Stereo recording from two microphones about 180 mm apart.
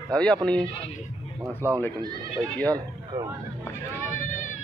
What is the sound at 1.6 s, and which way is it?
Speech, 15° right (ahead or behind).